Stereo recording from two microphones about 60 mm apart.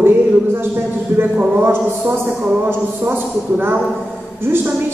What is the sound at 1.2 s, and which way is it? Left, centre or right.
Speech, right.